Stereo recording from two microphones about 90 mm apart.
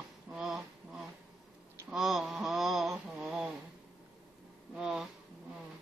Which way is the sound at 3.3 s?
5° right (ahead or behind).